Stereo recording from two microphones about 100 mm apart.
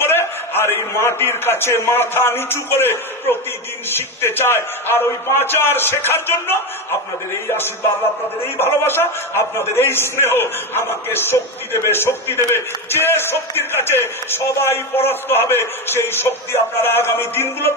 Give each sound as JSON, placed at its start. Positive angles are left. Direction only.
{"t": 0.0, "sound": "a man's voice", "side_deg": 25}
{"t": 8.5, "sound": "a man's voice", "side_deg": 20}